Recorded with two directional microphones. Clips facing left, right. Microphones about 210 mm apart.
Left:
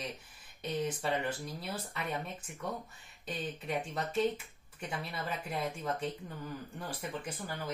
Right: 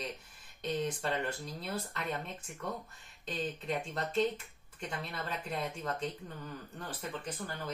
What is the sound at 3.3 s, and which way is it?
Speech, 10° left (ahead or behind).